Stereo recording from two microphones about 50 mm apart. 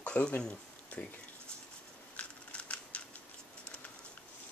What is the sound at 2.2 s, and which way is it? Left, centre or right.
Scissors, left.